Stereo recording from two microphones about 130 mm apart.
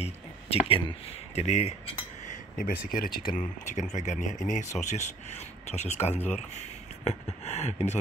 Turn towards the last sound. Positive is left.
turn(degrees=60)  # may be behind; listen again after turning